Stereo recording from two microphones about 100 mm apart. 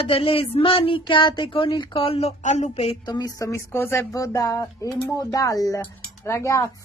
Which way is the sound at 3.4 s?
25° left (ahead or behind).